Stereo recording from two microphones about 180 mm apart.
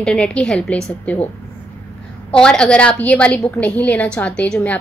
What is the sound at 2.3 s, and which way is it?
A woman's voice, 5° left (ahead or behind).